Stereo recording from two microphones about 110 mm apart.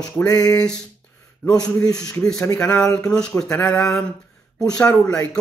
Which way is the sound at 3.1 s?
5° left (ahead or behind).